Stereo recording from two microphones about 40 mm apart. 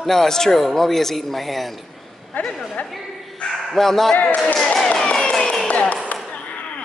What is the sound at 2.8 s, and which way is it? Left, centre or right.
Speech, left.